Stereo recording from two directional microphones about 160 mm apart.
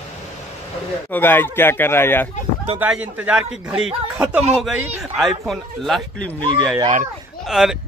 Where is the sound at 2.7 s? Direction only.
10° right (ahead or behind); by 6.4 s 10° left (ahead or behind).